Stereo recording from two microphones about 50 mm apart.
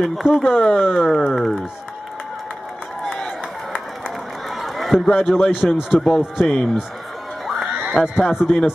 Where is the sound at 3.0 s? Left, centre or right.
Centre.